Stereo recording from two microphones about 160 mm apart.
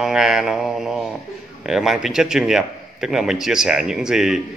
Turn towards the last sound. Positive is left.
turn(degrees=-5)  # may be behind; listen again after turning